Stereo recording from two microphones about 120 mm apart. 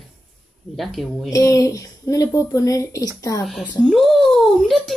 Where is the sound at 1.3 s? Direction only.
30° left (ahead or behind).